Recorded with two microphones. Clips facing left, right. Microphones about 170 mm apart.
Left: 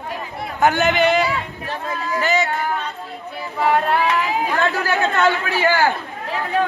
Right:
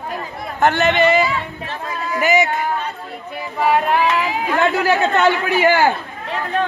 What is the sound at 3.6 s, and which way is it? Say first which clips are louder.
A man's voice: right 2 dB; 10° right (ahead or behind).